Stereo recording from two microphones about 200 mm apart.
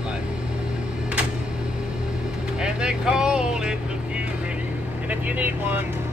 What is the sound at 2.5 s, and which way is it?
Speech, 5° right (ahead or behind).